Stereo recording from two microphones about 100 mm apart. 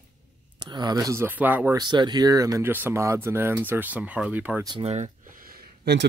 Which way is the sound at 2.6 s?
20° right (ahead or behind).